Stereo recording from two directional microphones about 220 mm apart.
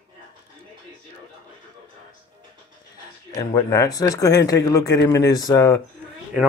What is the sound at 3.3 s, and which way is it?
Speech, 15° left (ahead or behind).